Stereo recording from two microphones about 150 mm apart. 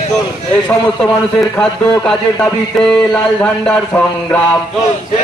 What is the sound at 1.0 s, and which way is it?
Speech, 10° left (ahead or behind).